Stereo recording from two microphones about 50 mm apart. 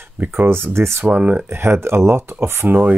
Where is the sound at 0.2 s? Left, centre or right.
Right.